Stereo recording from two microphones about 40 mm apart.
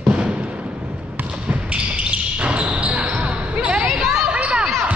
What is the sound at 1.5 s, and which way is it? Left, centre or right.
Basketball bounce, right.